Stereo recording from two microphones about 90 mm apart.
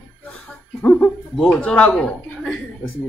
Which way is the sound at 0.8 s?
20° left (ahead or behind).